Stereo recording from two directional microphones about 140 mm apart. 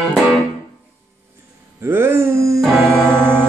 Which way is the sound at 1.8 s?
15° right (ahead or behind).